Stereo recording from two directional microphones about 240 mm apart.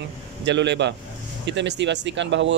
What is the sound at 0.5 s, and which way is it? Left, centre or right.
Speech, right.